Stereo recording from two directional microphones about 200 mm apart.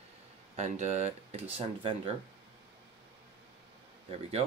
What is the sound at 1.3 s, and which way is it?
Speech, 25° right (ahead or behind).